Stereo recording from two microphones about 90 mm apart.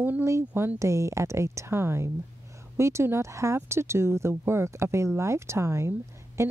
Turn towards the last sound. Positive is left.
turn(degrees=-30)  # may be behind; listen again after turning